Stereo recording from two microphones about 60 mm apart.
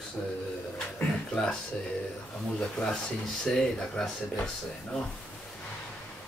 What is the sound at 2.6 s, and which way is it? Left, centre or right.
Speech, centre.